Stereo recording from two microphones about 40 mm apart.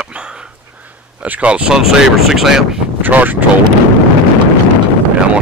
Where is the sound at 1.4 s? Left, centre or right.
Right.